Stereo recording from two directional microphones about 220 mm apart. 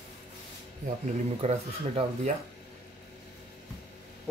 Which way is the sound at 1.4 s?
30° right (ahead or behind).